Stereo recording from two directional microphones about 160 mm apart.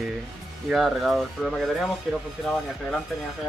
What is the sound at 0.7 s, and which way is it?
Speech, centre (ahead or behind).